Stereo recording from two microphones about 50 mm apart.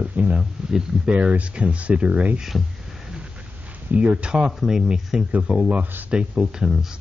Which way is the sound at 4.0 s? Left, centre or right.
Right.